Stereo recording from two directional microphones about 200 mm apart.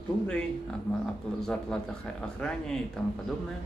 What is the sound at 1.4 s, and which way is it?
Speech, centre (ahead or behind).